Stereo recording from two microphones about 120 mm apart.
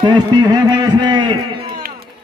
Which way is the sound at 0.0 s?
40° right (ahead or behind).